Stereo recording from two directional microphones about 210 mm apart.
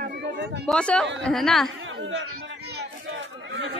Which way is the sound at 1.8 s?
65° right (ahead or behind).